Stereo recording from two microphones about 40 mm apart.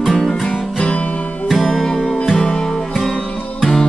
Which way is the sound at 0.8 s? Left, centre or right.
Left.